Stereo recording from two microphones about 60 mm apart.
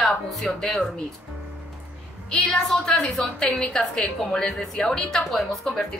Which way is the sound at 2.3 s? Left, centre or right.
Centre.